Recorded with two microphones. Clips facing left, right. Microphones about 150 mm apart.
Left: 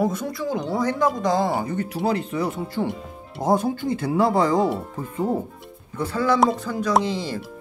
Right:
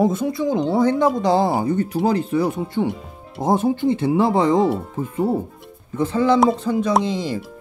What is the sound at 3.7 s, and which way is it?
Speech, 20° right (ahead or behind).